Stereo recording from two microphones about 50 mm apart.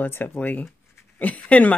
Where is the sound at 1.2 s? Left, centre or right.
Left.